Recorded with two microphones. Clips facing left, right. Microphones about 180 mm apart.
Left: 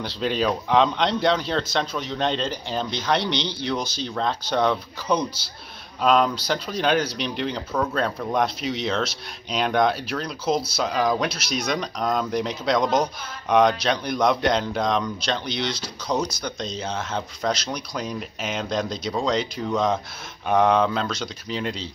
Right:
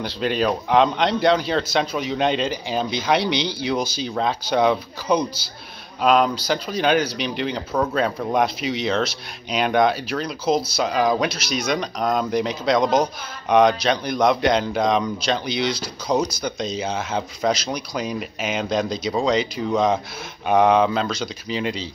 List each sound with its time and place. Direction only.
0.0 s speech: centre (ahead or behind)